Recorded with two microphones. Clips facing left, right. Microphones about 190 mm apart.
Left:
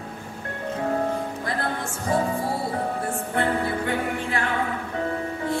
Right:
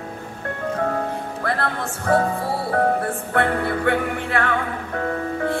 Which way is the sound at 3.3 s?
60° right (ahead or behind).